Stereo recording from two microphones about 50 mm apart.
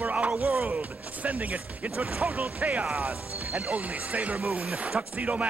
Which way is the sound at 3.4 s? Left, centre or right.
Right.